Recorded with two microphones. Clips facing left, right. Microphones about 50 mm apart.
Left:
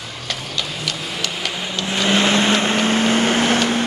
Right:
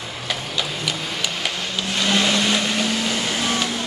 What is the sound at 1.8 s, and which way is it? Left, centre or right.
Vehicle, left.